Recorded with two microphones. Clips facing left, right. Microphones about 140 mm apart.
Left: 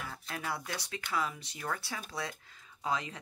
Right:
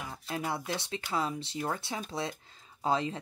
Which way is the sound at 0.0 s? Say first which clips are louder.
Right 4 dB; 25° right (ahead or behind).